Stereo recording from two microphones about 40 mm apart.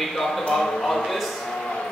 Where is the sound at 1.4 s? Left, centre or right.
Centre.